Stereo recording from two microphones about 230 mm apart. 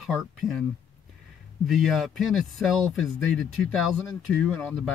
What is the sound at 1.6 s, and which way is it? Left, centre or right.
A man's voice, centre.